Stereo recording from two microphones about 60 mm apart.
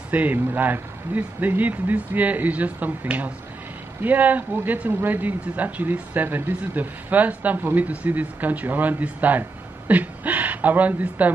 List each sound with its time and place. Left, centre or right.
0.1 s speech: right